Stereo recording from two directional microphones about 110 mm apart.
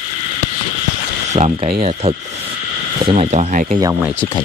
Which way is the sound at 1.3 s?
65° right (ahead or behind).